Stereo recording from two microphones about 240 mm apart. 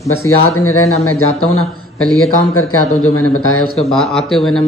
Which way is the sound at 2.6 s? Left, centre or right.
Left.